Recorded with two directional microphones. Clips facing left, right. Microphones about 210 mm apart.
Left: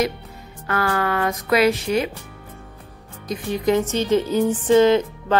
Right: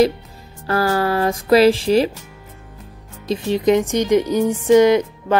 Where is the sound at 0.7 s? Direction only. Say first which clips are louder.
Right 4 dB; 35° right (ahead or behind).